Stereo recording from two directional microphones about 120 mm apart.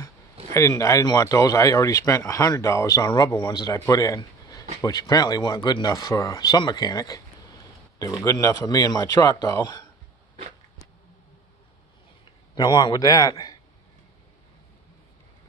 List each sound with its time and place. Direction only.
0.5 s speech: 25° left (ahead or behind)
12.5 s speech: 35° left (ahead or behind)